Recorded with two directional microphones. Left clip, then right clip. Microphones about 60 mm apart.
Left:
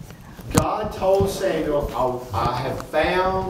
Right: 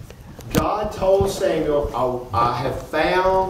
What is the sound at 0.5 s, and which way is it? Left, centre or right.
A man's voice, centre.